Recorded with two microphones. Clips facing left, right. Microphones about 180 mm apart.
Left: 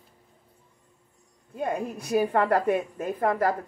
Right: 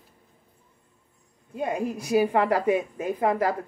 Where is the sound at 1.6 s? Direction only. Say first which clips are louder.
Right 2 dB; 10° right (ahead or behind).